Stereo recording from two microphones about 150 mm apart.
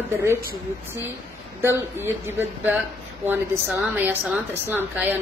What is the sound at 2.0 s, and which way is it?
A woman's voice, 15° right (ahead or behind).